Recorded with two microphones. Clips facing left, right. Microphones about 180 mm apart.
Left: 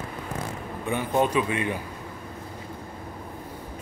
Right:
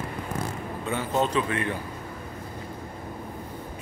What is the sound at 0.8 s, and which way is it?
Speech, 15° left (ahead or behind).